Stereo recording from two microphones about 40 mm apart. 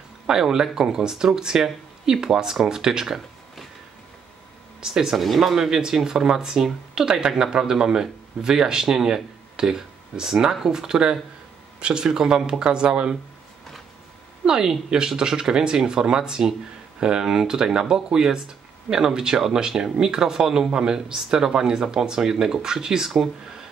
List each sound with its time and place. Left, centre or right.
0.3 s speech: centre
4.7 s speech: centre
5.1 s speech: centre
5.7 s speech: centre
14.4 s speech: centre